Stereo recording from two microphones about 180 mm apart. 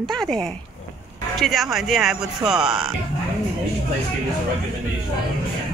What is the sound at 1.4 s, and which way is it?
Speech, centre (ahead or behind).